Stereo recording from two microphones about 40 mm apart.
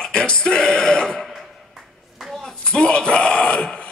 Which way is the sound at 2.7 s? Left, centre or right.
Left.